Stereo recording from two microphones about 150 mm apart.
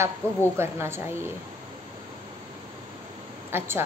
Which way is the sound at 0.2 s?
15° right (ahead or behind).